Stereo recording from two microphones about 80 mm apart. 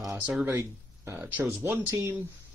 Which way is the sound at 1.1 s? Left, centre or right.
Right.